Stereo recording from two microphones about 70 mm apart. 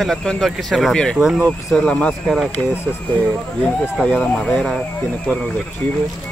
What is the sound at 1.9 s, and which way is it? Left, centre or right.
Speech, centre.